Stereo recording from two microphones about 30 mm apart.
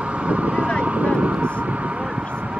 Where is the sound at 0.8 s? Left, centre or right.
Right.